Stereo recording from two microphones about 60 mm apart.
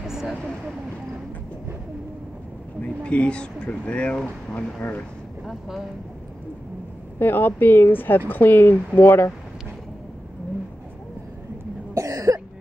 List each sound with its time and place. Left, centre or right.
0.0 s a sound: centre
2.8 s speech: left
5.5 s speech: centre
7.2 s speech: left
11.9 s cough: right